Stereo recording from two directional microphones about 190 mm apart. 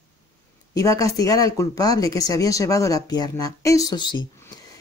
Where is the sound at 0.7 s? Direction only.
15° left (ahead or behind).